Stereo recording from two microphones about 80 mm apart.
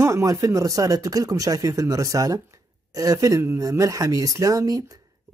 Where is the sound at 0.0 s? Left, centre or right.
Right.